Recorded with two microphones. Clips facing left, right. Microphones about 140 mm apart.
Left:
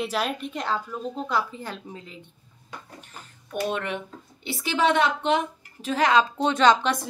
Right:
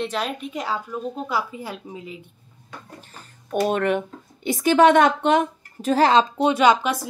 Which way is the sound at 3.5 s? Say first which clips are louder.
Right 7 dB; 50° right (ahead or behind).